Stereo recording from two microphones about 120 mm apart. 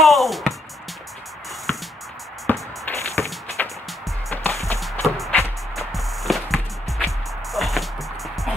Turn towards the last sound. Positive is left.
turn(degrees=0)  # may be behind; listen again after turning